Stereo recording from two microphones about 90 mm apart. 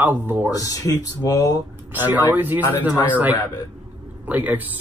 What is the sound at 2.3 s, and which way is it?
Speech, 20° right (ahead or behind).